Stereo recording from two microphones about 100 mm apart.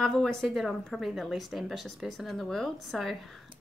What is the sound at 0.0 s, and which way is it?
A woman's voice, 5° left (ahead or behind).